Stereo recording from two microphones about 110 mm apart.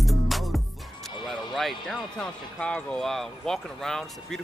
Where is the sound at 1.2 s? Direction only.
Centre (ahead or behind).